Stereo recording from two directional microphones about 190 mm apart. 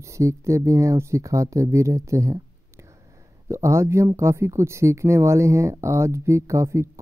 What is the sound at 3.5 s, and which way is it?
Speech, 15° right (ahead or behind).